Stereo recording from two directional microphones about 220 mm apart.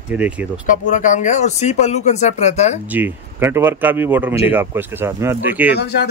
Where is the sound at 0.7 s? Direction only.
35° left (ahead or behind).